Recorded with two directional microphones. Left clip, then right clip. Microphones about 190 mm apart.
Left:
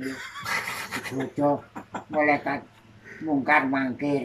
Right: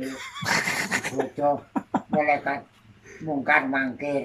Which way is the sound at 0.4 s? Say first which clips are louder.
Right 6 dB; 55° right (ahead or behind).